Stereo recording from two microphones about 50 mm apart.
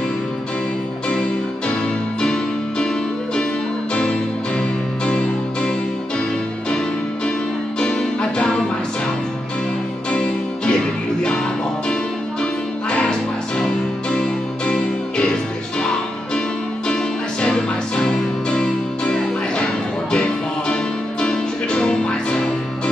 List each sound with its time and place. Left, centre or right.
2.2 s keyboard: centre
3.9 s music: centre
7.8 s music: centre
10.1 s music: centre
14.7 s music: centre
16.8 s music: centre